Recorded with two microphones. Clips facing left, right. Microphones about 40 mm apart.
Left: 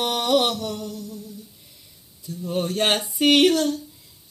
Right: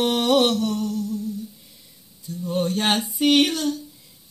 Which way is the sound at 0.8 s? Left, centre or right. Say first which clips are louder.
Right 7 dB; right.